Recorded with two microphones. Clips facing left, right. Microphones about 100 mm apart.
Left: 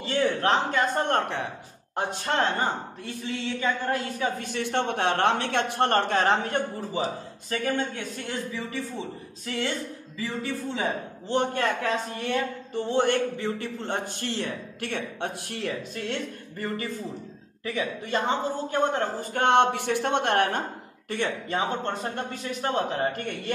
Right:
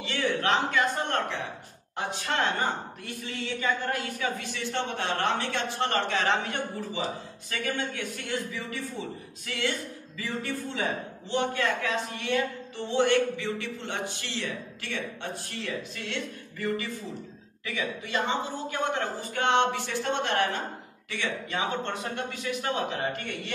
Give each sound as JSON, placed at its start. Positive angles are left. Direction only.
{"t": 0.0, "sound": "a man's voice", "side_deg": 40}
{"t": 4.4, "sound": "a man's voice", "side_deg": 55}
{"t": 11.2, "sound": "a man's voice", "side_deg": 45}
{"t": 16.6, "sound": "a man's voice", "side_deg": 40}
{"t": 21.1, "sound": "a man's voice", "side_deg": 45}